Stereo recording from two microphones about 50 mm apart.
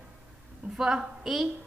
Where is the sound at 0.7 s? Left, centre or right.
Centre.